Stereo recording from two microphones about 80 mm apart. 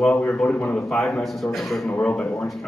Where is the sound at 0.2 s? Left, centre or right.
Centre.